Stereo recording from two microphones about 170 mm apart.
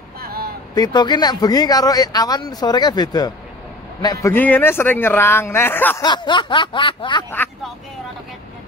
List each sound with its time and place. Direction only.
0.2 s vehicle: 65° right (ahead or behind)
0.7 s speech: 25° left (ahead or behind)
6.0 s speech: 25° left (ahead or behind)